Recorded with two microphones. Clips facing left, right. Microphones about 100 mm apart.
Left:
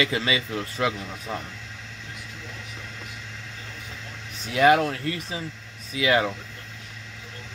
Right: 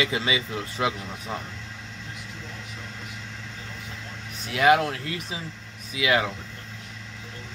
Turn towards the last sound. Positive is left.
turn(degrees=-10)  # may be behind; listen again after turning